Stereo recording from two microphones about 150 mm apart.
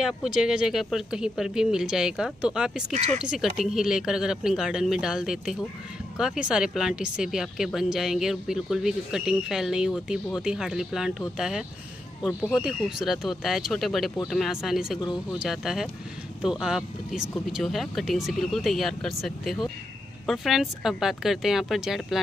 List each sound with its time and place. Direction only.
0.0 s speech: 5° right (ahead or behind)
2.9 s speech: 55° right (ahead or behind)
3.3 s speech: 5° right (ahead or behind)